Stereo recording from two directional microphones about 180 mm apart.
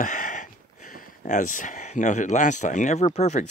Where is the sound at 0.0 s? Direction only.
45° left (ahead or behind).